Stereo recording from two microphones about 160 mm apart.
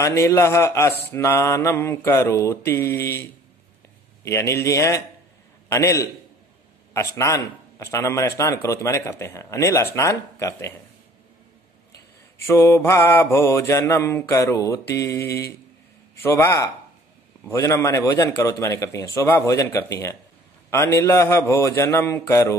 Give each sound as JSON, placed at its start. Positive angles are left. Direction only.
{"t": 0.0, "sound": "a man's voice", "side_deg": 20}
{"t": 12.4, "sound": "a man's voice", "side_deg": 15}